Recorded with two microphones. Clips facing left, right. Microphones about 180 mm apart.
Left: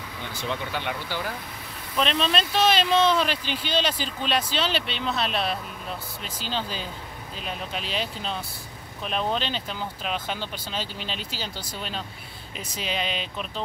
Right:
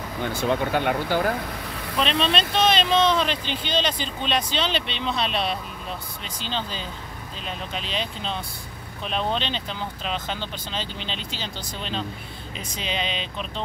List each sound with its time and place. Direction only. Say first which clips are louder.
0.2 s speech: right 8 dB; 50° right (ahead or behind)
2.0 s speech: right 1 dB; 5° left (ahead or behind)